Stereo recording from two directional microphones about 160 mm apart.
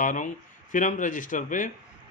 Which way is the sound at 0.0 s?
55° left (ahead or behind).